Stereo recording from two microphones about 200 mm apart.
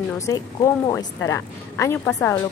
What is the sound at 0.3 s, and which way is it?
Speech, 15° left (ahead or behind).